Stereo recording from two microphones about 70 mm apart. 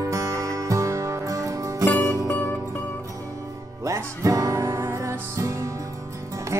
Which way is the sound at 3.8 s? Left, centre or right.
Right.